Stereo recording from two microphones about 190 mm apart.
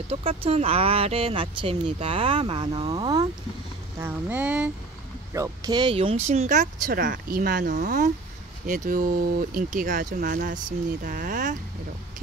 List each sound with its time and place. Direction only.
0.1 s speech: 30° right (ahead or behind)
4.0 s speech: 10° right (ahead or behind)
5.3 s speech: 20° right (ahead or behind); by 11.5 s 45° right (ahead or behind)